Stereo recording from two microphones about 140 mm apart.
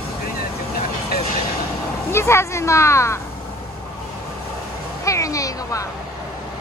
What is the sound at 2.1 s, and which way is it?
Speech, 20° left (ahead or behind).